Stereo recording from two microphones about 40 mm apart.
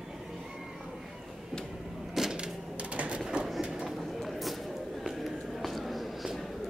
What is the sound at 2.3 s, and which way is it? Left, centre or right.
Typewriter, right.